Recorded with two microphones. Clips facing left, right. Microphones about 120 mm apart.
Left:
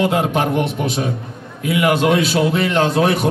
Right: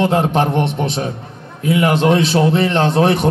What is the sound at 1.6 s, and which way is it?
Speech, 35° right (ahead or behind).